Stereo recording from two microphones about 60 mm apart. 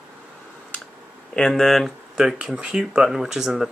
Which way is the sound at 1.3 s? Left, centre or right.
Centre.